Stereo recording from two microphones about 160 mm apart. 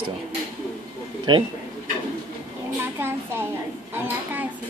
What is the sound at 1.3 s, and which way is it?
Speech, 30° right (ahead or behind).